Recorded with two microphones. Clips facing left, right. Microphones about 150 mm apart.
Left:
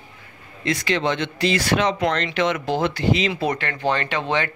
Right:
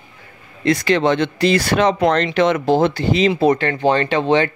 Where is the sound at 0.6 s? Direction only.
45° right (ahead or behind).